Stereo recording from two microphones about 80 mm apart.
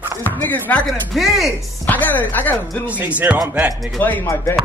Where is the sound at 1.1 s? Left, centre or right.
Centre.